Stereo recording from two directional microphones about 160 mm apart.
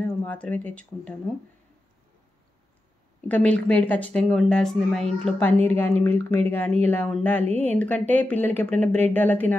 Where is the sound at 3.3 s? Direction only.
10° left (ahead or behind).